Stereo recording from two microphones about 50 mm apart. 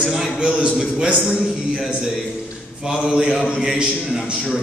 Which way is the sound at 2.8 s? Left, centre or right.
Centre.